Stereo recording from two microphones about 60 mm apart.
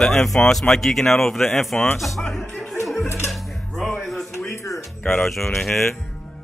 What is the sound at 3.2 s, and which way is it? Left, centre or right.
Music, centre.